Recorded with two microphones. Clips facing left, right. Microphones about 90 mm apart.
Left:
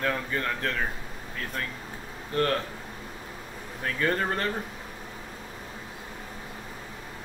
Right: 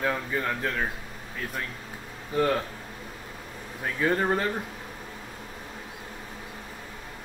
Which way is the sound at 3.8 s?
5° right (ahead or behind).